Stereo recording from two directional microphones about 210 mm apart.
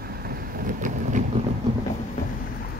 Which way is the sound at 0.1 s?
45° right (ahead or behind).